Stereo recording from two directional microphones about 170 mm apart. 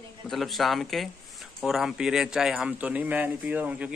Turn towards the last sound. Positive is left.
turn(degrees=-10)  # may be behind; listen again after turning